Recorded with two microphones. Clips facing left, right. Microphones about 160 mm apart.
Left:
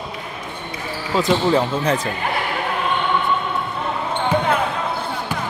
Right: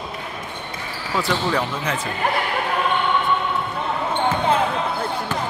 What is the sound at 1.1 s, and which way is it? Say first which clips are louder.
Speech: left 5 dB; 25° left (ahead or behind).